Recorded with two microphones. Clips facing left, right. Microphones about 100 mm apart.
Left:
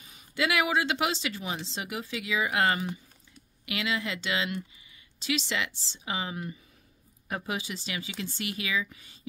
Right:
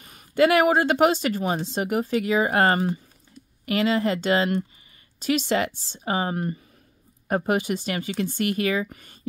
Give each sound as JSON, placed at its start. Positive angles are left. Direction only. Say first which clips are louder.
{"t": 0.0, "sound": "speech", "louder": "right 11 dB", "side_deg": -60}